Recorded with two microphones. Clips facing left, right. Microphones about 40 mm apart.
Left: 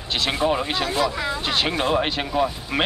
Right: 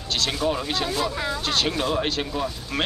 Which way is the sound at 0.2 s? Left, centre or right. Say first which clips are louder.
Left 4 dB; left.